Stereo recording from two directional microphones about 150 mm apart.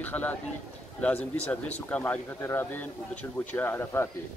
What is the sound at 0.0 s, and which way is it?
Speech, 10° left (ahead or behind).